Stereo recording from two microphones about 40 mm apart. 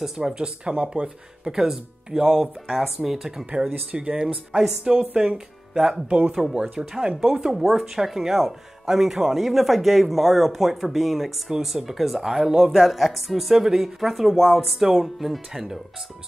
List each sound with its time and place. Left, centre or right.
0.0 s speech: centre
1.4 s speech: centre
3.9 s speech: right; by 6.0 s centre
6.0 s speech: right
12.7 s speech: centre